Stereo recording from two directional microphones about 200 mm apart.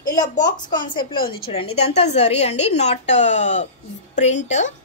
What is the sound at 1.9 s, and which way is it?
A woman's voice, 30° left (ahead or behind).